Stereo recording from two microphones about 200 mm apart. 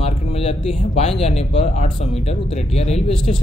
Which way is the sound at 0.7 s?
30° left (ahead or behind).